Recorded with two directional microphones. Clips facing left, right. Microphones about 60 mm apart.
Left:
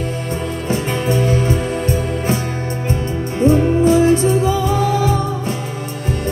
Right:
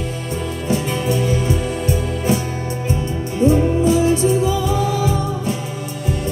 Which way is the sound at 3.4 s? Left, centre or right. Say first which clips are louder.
Left 2 dB; left.